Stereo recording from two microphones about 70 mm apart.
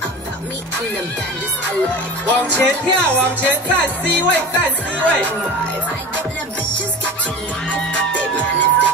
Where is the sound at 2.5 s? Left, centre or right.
Centre.